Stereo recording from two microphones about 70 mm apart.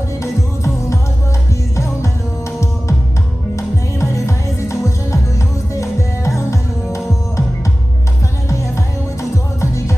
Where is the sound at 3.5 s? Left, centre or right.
Left.